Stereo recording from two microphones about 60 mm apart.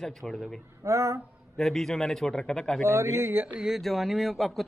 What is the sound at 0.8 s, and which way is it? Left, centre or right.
Speech, right.